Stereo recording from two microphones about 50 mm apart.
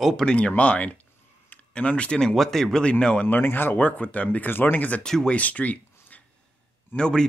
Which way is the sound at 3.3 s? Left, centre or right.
Left.